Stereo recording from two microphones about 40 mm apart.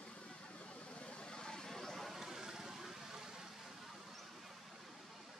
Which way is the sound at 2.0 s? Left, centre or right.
Centre.